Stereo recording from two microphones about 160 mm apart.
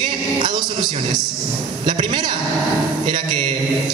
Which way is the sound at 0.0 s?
30° right (ahead or behind).